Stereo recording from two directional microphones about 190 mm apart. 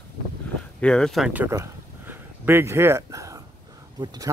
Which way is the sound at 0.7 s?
5° left (ahead or behind).